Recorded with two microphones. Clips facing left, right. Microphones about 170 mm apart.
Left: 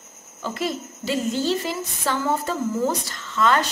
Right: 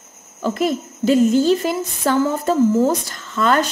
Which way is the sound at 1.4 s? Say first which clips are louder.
Right 7 dB; 50° right (ahead or behind).